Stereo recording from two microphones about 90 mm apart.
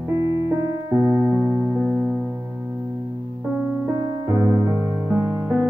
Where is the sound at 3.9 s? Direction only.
35° right (ahead or behind).